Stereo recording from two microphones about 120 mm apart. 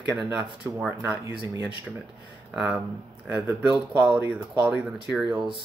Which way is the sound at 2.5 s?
10° right (ahead or behind).